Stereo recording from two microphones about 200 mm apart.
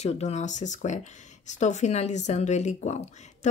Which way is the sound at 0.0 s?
35° left (ahead or behind).